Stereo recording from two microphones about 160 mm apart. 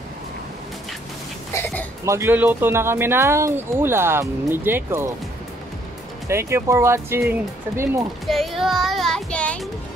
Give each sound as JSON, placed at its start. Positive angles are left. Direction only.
{"t": 1.5, "sound": "music", "side_deg": 10}
{"t": 2.0, "sound": "speech", "side_deg": -15}
{"t": 6.2, "sound": "speech", "side_deg": -15}
{"t": 8.3, "sound": "speech", "side_deg": 0}